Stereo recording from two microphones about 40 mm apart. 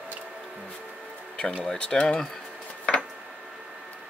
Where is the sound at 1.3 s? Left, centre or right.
Left.